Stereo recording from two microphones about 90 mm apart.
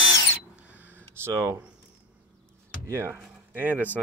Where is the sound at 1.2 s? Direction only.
30° right (ahead or behind).